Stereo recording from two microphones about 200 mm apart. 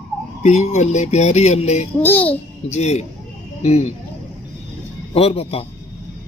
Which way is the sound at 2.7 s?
35° left (ahead or behind).